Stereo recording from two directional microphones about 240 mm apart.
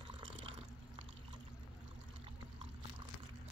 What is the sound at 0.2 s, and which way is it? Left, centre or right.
Water, right.